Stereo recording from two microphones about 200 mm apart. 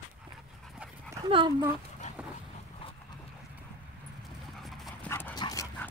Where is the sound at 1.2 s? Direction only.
25° right (ahead or behind).